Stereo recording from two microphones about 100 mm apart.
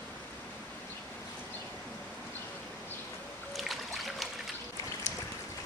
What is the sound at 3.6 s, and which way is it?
Boat, centre (ahead or behind).